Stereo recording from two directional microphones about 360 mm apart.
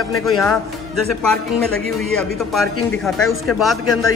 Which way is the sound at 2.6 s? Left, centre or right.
Centre.